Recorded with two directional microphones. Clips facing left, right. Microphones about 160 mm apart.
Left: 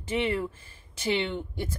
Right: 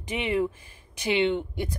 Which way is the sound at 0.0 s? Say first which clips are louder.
Right 2 dB; 15° right (ahead or behind).